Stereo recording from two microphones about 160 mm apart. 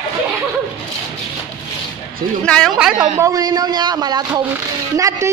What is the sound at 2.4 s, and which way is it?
Speech, 5° left (ahead or behind).